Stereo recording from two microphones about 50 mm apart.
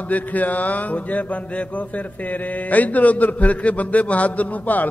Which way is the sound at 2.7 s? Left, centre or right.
Left.